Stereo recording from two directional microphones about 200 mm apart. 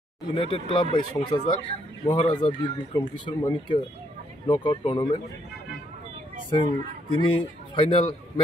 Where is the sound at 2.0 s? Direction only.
25° left (ahead or behind).